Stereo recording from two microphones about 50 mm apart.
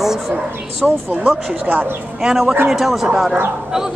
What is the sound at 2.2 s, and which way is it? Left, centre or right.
Speech, centre.